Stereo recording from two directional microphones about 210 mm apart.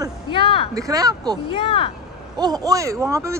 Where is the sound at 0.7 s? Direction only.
15° right (ahead or behind).